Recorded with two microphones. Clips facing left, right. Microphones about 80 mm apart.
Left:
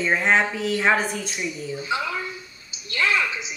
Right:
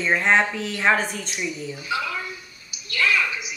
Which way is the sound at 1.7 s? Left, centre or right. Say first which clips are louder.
Left 4 dB; left.